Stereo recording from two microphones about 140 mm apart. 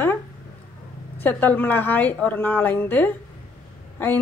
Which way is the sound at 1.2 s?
15° left (ahead or behind).